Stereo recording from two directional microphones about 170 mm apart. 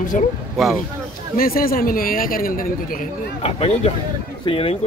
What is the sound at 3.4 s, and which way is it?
Speech, 35° left (ahead or behind).